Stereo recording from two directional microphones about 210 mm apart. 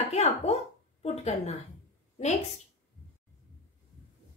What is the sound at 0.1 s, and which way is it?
A woman's voice, 30° left (ahead or behind).